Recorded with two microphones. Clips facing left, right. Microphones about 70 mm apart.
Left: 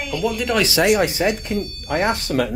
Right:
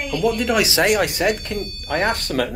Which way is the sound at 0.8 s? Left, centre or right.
Right.